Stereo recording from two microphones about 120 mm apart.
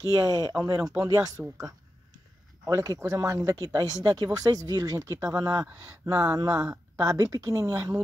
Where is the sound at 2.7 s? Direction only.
25° right (ahead or behind).